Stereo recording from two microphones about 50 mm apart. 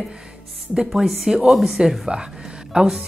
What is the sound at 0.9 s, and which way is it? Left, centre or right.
Speech, centre.